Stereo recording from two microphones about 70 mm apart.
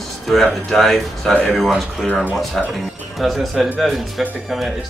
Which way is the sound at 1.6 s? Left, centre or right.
Centre.